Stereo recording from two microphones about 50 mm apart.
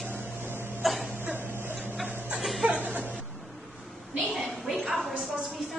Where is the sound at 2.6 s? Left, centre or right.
Right.